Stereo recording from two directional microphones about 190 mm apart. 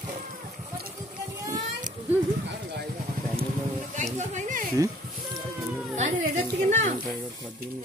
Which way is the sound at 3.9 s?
40° right (ahead or behind).